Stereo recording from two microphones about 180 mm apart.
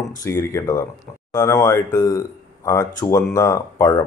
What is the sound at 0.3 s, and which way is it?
Speech, 15° left (ahead or behind).